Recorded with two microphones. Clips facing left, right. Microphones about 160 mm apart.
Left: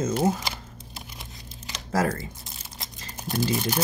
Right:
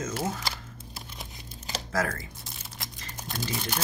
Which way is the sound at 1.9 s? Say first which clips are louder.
Left 5 dB; 30° left (ahead or behind).